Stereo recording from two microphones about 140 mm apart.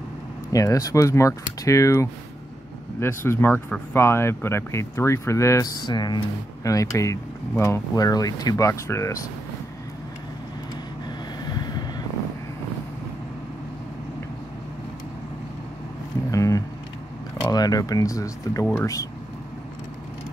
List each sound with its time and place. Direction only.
0.5 s speech: 25° left (ahead or behind)
5.8 s speech: 30° left (ahead or behind)
11.4 s boat: 30° left (ahead or behind)
16.3 s a sound: 25° left (ahead or behind)
17.5 s speech: 25° left (ahead or behind)